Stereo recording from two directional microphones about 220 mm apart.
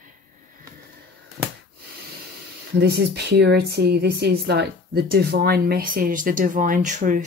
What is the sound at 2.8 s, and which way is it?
A woman's voice, 50° right (ahead or behind).